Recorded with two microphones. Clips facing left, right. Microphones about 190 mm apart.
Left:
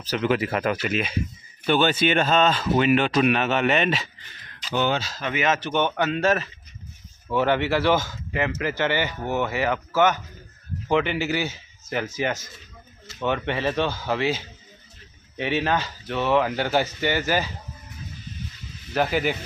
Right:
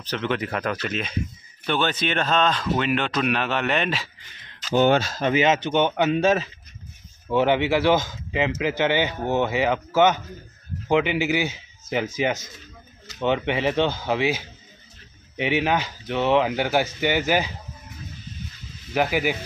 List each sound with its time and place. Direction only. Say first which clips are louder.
0.0 s speech: left 3 dB; 10° left (ahead or behind)
4.6 s speech: right 6 dB; 45° right (ahead or behind)
5.2 s speech: right 4 dB; 30° right (ahead or behind)
18.9 s speech: right 1 dB; 10° right (ahead or behind)